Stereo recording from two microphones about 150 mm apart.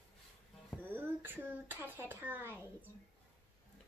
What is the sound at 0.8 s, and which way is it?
Speech, 10° right (ahead or behind).